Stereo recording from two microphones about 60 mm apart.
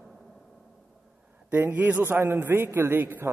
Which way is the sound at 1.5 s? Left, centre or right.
Right.